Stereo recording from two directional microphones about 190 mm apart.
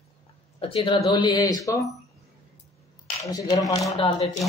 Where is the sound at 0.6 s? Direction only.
25° left (ahead or behind).